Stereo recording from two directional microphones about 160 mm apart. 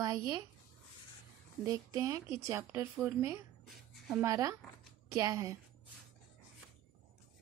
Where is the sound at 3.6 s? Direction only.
Centre (ahead or behind).